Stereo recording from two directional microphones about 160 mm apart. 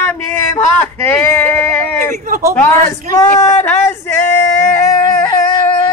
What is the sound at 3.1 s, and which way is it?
Speech, 15° left (ahead or behind).